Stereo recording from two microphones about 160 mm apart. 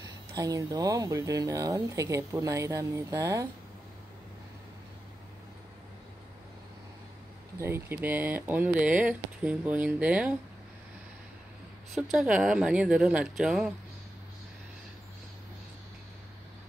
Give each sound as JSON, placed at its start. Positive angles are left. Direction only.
{"t": 0.0, "sound": "speech", "side_deg": -20}
{"t": 7.5, "sound": "speech", "side_deg": -15}
{"t": 11.9, "sound": "speech", "side_deg": -5}